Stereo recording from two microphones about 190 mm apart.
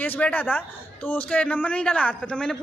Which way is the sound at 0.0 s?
10° left (ahead or behind).